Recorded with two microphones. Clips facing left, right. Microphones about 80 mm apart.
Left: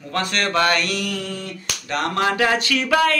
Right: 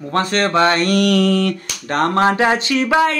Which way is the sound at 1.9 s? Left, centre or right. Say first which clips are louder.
Right 6 dB; right.